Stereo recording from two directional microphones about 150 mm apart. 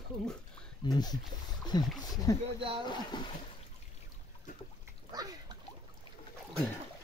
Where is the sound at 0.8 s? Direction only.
25° left (ahead or behind).